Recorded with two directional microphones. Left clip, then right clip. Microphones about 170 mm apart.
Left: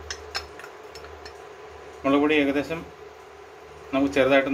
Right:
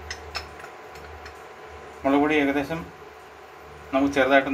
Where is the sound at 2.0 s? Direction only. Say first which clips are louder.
Even; 25° left (ahead or behind).